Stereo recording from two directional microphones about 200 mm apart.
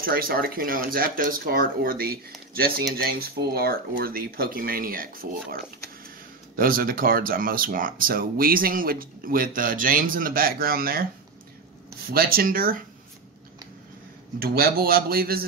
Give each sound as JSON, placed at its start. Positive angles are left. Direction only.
{"t": 0.0, "sound": "speech", "side_deg": -45}
{"t": 12.1, "sound": "speech", "side_deg": -45}
{"t": 14.4, "sound": "speech", "side_deg": -50}